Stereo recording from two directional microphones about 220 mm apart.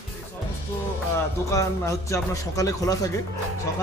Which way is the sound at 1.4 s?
15° left (ahead or behind).